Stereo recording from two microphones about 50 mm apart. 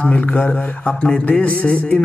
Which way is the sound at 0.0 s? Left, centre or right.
Left.